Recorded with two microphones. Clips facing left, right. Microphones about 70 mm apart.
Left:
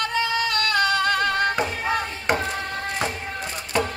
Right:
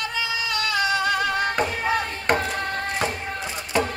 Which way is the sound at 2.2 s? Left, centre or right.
Right.